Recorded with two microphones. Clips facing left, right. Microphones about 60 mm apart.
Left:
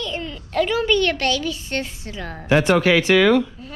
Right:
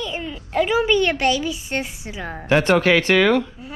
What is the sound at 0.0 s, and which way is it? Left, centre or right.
A child's voice, centre.